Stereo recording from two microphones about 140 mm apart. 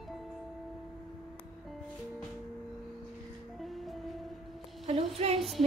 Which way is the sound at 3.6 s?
Centre (ahead or behind).